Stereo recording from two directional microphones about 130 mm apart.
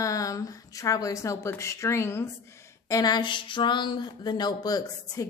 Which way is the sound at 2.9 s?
30° left (ahead or behind).